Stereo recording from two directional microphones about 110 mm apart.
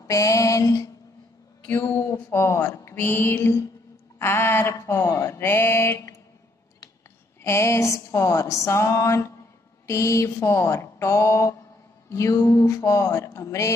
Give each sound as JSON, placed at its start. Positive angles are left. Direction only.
{"t": 0.0, "sound": "a sound", "side_deg": 30}
{"t": 1.7, "sound": "speech", "side_deg": 20}
{"t": 7.4, "sound": "speech", "side_deg": 25}